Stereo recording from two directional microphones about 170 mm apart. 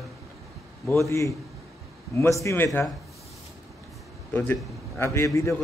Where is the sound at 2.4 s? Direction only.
15° left (ahead or behind).